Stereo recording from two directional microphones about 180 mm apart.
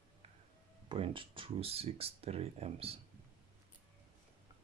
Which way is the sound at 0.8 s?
30° right (ahead or behind).